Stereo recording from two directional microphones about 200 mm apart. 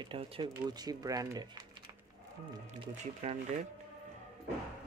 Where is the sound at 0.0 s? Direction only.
25° right (ahead or behind).